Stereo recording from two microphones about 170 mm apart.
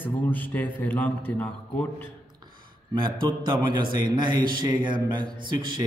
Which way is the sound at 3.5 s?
25° right (ahead or behind).